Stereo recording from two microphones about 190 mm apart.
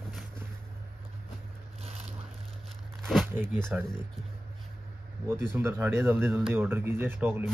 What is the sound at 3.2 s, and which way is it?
Speech, 10° right (ahead or behind).